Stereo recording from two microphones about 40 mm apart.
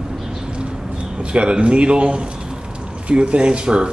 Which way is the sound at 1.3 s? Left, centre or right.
Right.